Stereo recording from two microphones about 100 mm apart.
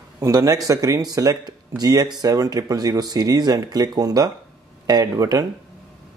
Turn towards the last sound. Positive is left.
turn(degrees=-40)  # may be behind; listen again after turning